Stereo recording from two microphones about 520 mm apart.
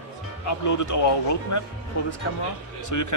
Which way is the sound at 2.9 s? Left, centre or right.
Left.